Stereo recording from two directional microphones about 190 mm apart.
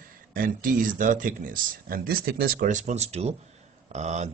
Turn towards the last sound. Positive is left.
turn(degrees=-35)  # may be behind; listen again after turning